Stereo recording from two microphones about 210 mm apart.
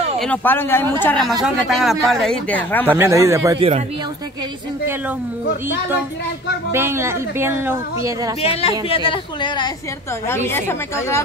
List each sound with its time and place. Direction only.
0.2 s speech: 10° left (ahead or behind)
2.9 s speech: 15° right (ahead or behind)
6.7 s speech: 10° right (ahead or behind)
8.4 s a woman's voice: 30° left (ahead or behind)
10.2 s speech: 10° left (ahead or behind)